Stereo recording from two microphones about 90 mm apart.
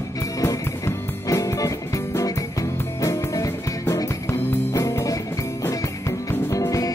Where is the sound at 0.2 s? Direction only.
35° left (ahead or behind).